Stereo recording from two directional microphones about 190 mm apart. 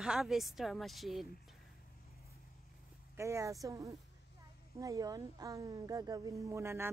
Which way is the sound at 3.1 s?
15° right (ahead or behind).